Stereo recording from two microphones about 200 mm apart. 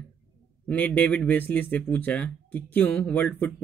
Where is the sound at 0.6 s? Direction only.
5° left (ahead or behind).